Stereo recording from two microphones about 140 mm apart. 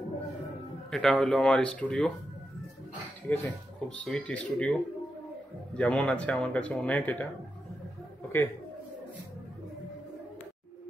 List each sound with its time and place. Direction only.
0.8 s speech: 5° left (ahead or behind)
3.3 s speech: 10° left (ahead or behind)
5.8 s speech: 10° left (ahead or behind)